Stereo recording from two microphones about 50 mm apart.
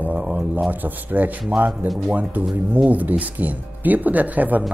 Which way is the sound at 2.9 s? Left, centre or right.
Right.